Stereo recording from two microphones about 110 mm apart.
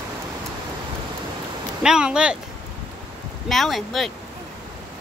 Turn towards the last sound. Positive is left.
turn(degrees=0)  # may be behind; listen again after turning